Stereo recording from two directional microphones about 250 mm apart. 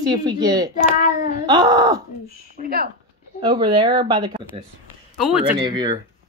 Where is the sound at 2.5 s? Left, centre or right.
Right.